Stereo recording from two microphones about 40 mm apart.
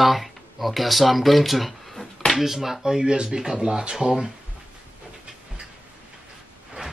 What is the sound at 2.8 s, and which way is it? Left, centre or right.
Speech, centre.